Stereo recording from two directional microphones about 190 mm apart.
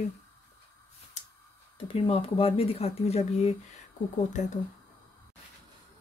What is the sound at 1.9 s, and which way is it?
Speech, 30° left (ahead or behind).